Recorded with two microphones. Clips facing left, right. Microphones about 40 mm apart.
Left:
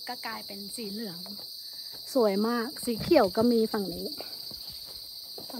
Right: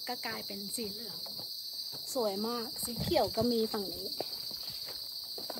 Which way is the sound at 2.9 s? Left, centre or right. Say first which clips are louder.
Left 10 dB; left.